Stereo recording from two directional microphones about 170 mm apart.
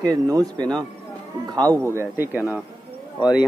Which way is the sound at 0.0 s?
20° right (ahead or behind).